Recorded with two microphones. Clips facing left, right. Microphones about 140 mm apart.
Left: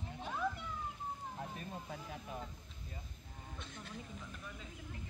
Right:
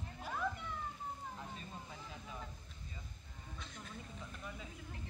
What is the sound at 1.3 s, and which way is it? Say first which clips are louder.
Vehicle: left 3 dB; 55° left (ahead or behind).